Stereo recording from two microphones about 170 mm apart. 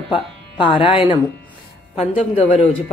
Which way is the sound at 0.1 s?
30° left (ahead or behind).